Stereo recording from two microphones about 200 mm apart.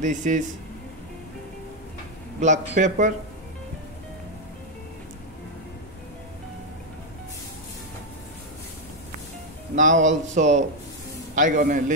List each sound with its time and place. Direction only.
0.0 s speech: 40° right (ahead or behind)
2.4 s speech: 40° right (ahead or behind)
9.8 s speech: 40° right (ahead or behind)